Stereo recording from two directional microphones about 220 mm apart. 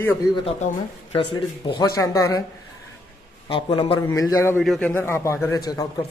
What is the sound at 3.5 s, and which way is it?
A man's voice, 20° left (ahead or behind).